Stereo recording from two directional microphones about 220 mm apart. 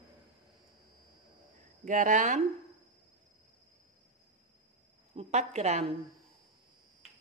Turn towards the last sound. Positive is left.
turn(degrees=-30)  # may be behind; listen again after turning